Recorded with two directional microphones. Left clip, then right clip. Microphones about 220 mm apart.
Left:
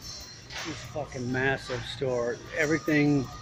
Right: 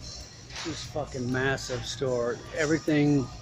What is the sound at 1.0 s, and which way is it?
Speech, 20° right (ahead or behind).